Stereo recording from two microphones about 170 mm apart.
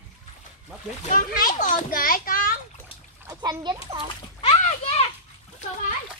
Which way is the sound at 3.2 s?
25° right (ahead or behind).